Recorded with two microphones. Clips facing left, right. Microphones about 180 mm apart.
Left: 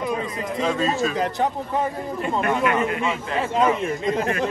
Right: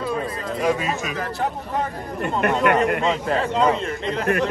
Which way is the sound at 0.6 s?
15° right (ahead or behind).